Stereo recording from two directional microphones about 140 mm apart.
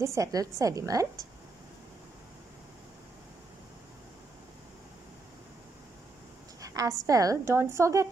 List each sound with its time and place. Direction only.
0.0 s a woman's voice: 20° right (ahead or behind)
6.6 s a sound: 25° right (ahead or behind)
7.1 s a woman's voice: 25° right (ahead or behind)